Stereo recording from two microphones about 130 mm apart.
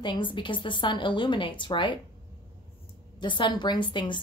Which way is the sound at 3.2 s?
35° left (ahead or behind).